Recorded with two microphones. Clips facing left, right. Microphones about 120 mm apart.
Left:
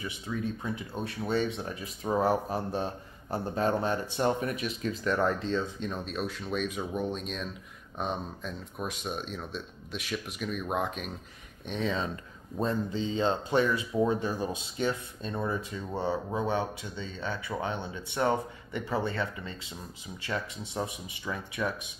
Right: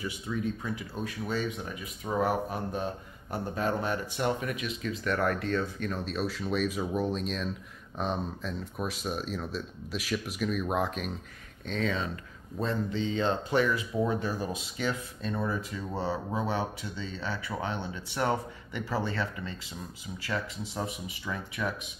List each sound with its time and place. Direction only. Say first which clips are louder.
0.6 s a man's voice: even; 25° left (ahead or behind)
5.2 s speech: right 1 dB; 20° left (ahead or behind)
5.9 s speech: right 3 dB; centre (ahead or behind)
11.6 s speech: even; 20° left (ahead or behind)
12.6 s speech: even; 35° left (ahead or behind)